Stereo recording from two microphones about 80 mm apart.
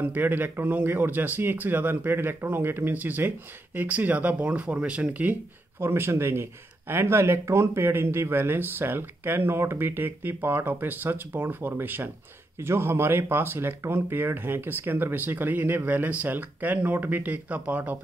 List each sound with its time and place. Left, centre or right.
0.0 s speech: right